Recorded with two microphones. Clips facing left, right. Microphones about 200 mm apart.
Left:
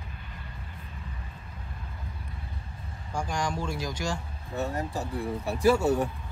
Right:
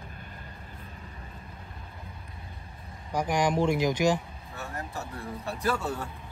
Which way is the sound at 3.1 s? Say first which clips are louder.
Right 5 dB; 20° right (ahead or behind).